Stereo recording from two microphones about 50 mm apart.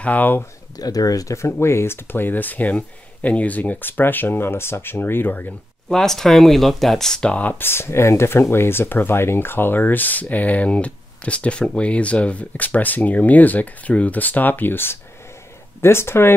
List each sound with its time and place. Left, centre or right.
0.0 s speech: left
1.3 s speech: left
2.0 s speech: left
5.9 s speech: centre
7.2 s speech: left
7.5 s speech: left
15.8 s speech: left